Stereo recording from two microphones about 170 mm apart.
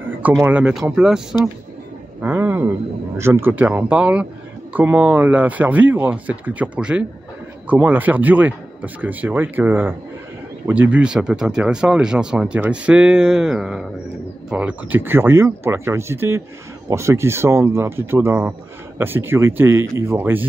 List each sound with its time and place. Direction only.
0.4 s speech: 10° right (ahead or behind)
2.2 s speech: 10° right (ahead or behind)